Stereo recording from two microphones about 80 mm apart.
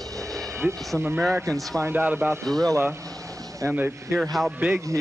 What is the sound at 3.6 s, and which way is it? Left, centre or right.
Speech, right.